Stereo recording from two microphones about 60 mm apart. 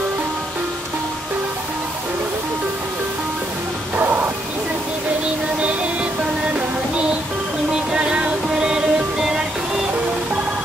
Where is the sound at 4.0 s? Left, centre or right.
Right.